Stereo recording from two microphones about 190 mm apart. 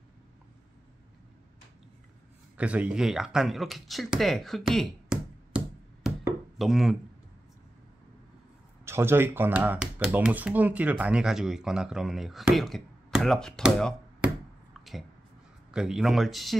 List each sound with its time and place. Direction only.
2.5 s speech: 5° right (ahead or behind)
6.0 s a sound: centre (ahead or behind)
8.8 s speech: 10° right (ahead or behind)
15.7 s speech: 5° right (ahead or behind)